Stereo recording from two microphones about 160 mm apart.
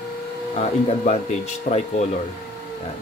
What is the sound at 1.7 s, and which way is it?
Speech, 60° left (ahead or behind).